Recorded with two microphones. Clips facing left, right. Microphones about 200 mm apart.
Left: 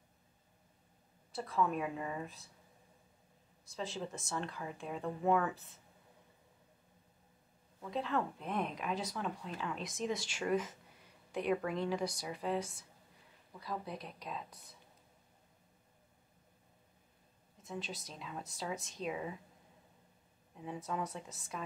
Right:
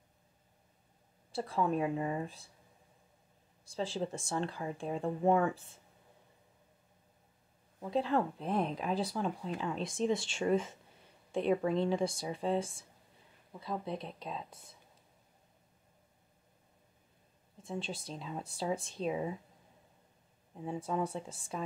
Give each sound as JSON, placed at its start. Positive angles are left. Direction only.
{"t": 1.3, "sound": "speech", "side_deg": -30}
{"t": 3.6, "sound": "speech", "side_deg": -30}
{"t": 7.8, "sound": "speech", "side_deg": -30}
{"t": 17.6, "sound": "speech", "side_deg": -30}
{"t": 20.6, "sound": "speech", "side_deg": -30}